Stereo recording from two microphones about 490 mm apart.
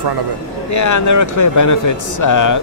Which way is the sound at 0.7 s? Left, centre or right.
Left.